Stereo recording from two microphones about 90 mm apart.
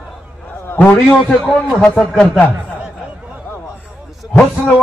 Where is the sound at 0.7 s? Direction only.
20° left (ahead or behind).